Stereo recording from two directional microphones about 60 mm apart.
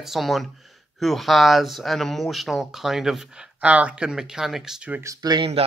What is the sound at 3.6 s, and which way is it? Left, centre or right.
Speech, right.